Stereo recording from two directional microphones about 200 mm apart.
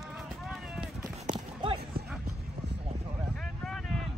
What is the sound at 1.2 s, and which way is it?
Clip-clop, 25° right (ahead or behind).